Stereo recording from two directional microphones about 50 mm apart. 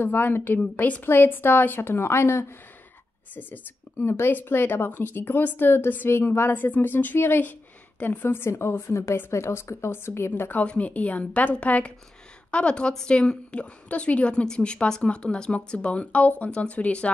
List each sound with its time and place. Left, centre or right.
0.0 s a woman's voice: left
0.6 s a woman's voice: left
1.0 s a woman's voice: left
3.3 s a woman's voice: left
4.0 s a woman's voice: left
6.0 s a woman's voice: left
8.5 s a woman's voice: left
10.6 s a woman's voice: left